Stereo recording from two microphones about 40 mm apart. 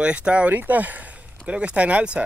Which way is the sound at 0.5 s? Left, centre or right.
Right.